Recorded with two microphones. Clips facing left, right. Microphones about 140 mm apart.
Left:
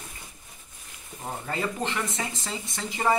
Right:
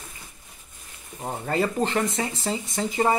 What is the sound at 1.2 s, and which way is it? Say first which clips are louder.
Speech: right 5 dB; 35° right (ahead or behind).